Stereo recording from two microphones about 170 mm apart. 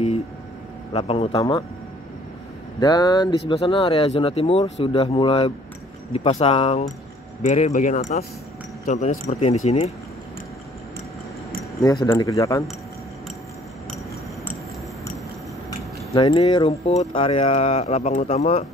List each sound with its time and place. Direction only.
0.9 s speech: 35° left (ahead or behind)
2.8 s speech: 25° left (ahead or behind); by 9.9 s 40° left (ahead or behind)
11.8 s speech: 20° left (ahead or behind)
16.1 s speech: 30° left (ahead or behind)